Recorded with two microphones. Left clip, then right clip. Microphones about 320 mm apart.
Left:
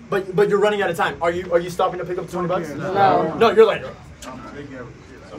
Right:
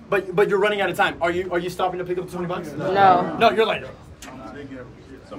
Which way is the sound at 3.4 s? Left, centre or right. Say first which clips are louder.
Left 4 dB; centre.